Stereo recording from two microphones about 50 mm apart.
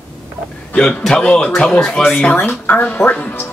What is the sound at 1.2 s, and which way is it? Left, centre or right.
Speech, left.